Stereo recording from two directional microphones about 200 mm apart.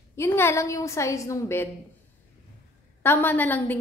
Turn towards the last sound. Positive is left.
turn(degrees=10)  # may be behind; listen again after turning